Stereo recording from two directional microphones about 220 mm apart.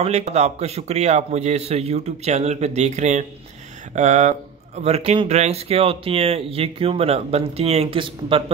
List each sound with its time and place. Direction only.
0.0 s speech: 30° right (ahead or behind)